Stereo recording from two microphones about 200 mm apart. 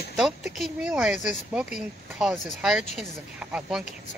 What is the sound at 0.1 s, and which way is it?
Speech, centre (ahead or behind).